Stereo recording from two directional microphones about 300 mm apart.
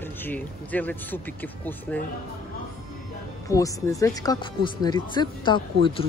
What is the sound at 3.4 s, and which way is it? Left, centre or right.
Speech, centre.